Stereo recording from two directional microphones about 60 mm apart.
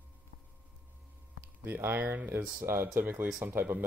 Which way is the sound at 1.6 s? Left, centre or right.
Right.